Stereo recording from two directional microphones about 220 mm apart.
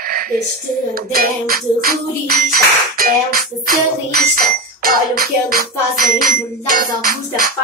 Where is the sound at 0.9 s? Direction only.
40° right (ahead or behind).